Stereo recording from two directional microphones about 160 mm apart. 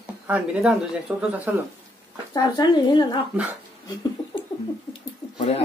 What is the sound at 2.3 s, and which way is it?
Speech, 25° left (ahead or behind).